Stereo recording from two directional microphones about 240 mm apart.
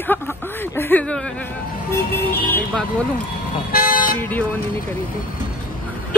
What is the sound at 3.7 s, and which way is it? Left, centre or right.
Vehicle, left.